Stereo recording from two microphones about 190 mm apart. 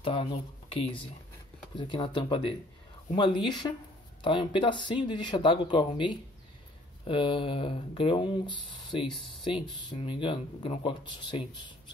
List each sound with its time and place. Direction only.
0.0 s speech: 30° left (ahead or behind)